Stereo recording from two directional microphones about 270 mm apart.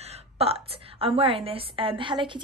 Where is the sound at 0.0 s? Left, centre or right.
Right.